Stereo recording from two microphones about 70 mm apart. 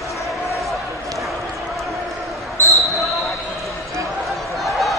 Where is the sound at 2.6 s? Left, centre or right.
Left.